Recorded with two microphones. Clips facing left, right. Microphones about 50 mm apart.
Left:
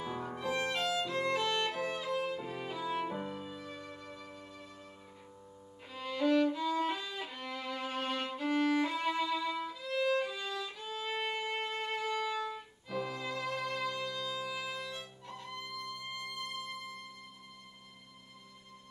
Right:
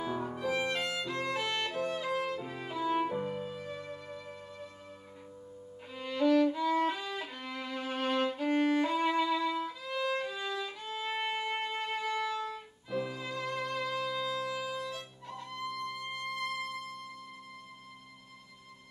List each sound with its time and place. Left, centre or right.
0.0 s music: centre
1.0 s violin: centre
1.7 s music: centre
5.9 s music: centre
7.0 s violin: centre
10.3 s violin: centre
14.8 s music: centre